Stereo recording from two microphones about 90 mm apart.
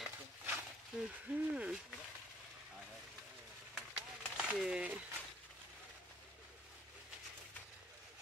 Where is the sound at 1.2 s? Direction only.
15° right (ahead or behind).